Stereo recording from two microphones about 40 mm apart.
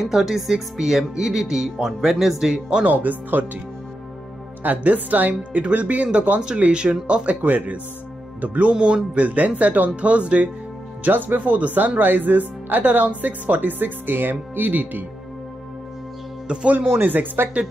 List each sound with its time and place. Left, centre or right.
0.0 s speech: centre
2.9 s speech: right
4.6 s speech: right
6.7 s speech: right
7.4 s speech: right
11.1 s speech: right
16.7 s speech: right